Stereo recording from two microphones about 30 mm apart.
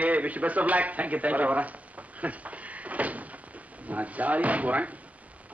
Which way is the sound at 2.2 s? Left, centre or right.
Right.